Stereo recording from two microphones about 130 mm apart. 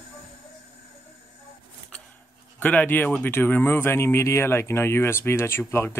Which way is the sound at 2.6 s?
10° left (ahead or behind).